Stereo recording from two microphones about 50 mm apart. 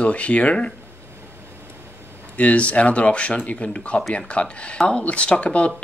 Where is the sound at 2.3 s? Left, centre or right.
Left.